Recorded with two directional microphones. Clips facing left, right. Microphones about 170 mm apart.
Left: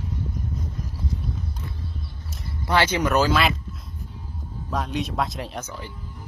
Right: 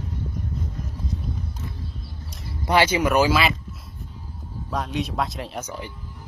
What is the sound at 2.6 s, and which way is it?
Speech, 10° right (ahead or behind).